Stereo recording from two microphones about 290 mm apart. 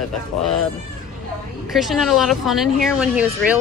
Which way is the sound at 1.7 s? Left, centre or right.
Centre.